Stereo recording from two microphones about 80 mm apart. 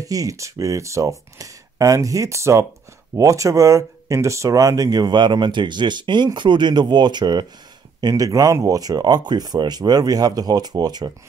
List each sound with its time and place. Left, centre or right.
0.0 s speech: right
8.0 s speech: right